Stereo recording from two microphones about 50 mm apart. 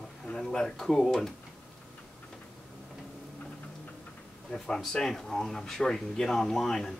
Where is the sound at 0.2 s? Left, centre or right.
Centre.